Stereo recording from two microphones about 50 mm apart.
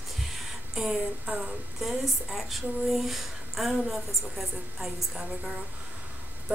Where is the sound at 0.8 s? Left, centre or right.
Centre.